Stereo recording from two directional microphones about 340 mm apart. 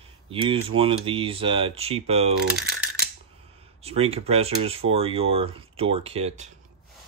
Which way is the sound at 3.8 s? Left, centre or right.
Centre.